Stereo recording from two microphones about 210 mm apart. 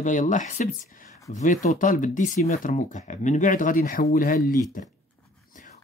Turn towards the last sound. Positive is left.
turn(degrees=45)  # may be behind; listen again after turning